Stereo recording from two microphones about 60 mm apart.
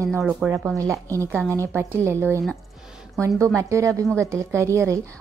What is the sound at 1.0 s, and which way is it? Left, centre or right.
Speech, right.